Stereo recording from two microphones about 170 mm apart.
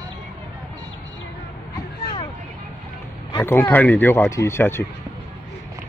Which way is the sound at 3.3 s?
15° left (ahead or behind).